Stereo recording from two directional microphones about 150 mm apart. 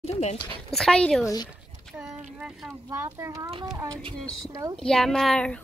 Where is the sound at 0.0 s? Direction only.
45° left (ahead or behind).